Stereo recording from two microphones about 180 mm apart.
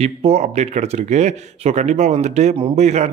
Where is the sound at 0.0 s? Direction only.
35° right (ahead or behind).